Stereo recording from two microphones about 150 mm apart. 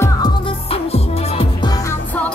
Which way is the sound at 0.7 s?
40° left (ahead or behind).